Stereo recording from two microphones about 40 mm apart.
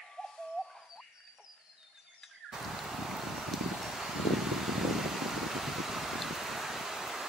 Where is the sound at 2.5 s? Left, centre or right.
Centre.